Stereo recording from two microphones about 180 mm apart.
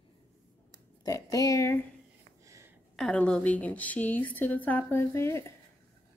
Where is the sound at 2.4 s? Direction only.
15° right (ahead or behind).